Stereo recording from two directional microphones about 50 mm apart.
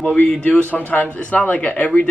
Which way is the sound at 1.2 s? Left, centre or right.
Left.